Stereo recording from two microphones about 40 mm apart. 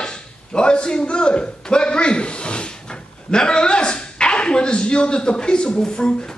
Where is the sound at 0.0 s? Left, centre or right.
Left.